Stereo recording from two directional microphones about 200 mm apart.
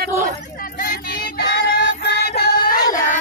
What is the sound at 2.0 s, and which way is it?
Music, 55° left (ahead or behind).